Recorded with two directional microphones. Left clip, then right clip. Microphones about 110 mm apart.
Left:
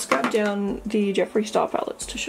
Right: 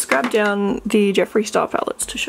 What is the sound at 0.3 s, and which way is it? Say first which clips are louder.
Speech: right 6 dB; 30° right (ahead or behind).